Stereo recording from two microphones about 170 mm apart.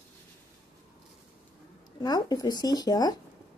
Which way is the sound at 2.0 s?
25° left (ahead or behind).